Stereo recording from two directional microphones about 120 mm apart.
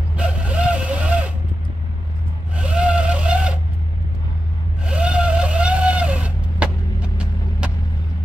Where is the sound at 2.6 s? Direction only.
10° right (ahead or behind).